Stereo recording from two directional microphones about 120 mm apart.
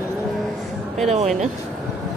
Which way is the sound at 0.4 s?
Centre (ahead or behind).